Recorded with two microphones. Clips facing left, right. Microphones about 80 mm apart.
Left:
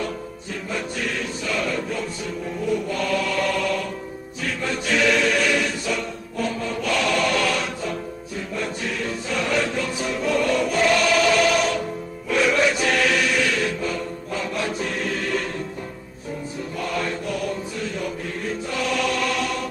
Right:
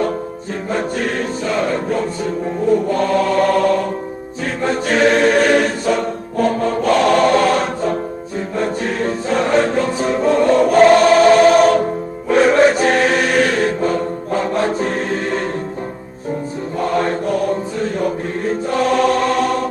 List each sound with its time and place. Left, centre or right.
0.7 s music: right
4.6 s choir: right
8.5 s music: right
16.8 s mantra: right